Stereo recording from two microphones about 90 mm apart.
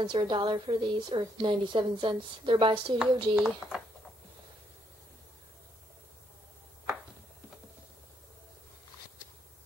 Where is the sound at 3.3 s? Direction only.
5° right (ahead or behind).